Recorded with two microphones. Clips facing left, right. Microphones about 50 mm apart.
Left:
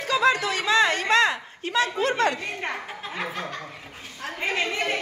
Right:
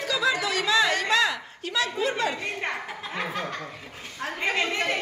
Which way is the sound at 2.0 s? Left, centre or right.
Left.